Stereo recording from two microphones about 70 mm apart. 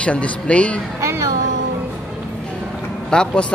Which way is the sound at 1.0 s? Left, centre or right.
Right.